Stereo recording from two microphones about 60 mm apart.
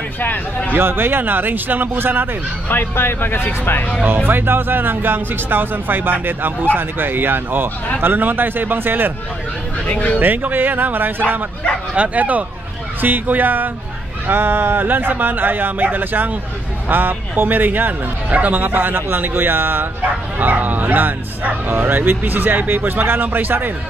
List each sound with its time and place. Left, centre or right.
0.7 s speech: right
2.7 s speech: left
4.3 s speech: right
9.8 s speech: left
10.1 s speech: right
11.9 s speech: right